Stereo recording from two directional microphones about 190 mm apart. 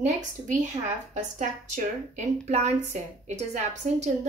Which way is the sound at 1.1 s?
40° right (ahead or behind).